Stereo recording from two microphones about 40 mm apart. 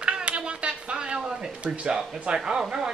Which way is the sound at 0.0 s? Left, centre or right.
Right.